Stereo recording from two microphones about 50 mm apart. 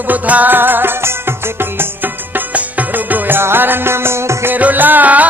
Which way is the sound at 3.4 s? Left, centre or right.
Right.